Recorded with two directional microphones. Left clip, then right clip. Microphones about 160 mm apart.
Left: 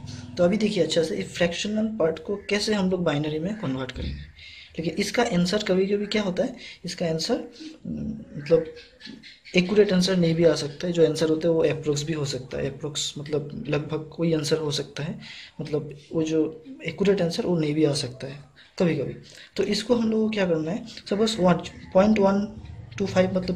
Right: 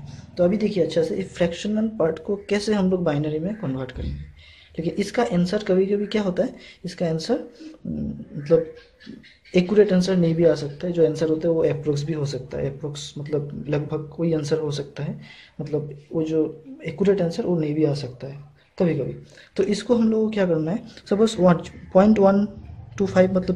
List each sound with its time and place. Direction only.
0.4 s speech: 20° right (ahead or behind)
9.8 s speech: 25° right (ahead or behind)
16.2 s speech: 20° right (ahead or behind)
19.5 s speech: 35° right (ahead or behind)